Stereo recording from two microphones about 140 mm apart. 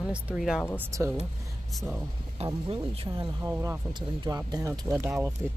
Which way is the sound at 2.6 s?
40° right (ahead or behind).